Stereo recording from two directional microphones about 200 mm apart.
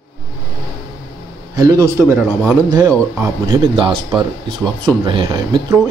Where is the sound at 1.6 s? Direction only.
15° right (ahead or behind).